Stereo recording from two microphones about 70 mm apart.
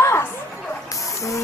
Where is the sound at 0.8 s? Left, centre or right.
Left.